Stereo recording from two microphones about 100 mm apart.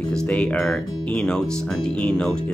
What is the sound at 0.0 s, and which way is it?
Speech, 5° left (ahead or behind).